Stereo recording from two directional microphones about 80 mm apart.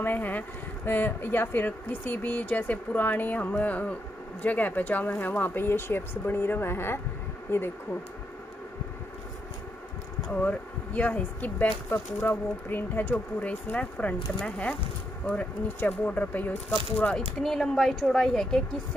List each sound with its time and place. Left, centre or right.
0.0 s speech: left
10.4 s speech: centre